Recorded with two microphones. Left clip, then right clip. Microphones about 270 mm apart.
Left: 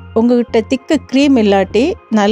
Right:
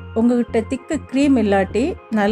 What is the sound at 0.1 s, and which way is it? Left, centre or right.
A woman's voice, left.